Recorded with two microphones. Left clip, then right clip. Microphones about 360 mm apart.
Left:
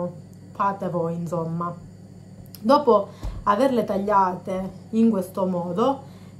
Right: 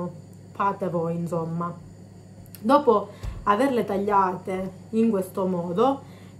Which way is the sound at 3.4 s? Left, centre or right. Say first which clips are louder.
Left 2 dB; centre.